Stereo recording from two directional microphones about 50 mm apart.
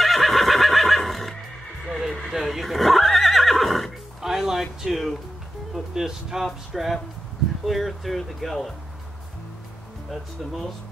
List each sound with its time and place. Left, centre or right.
0.0 s neigh: centre
4.2 s a sound: centre
5.9 s speech: centre
10.0 s speech: centre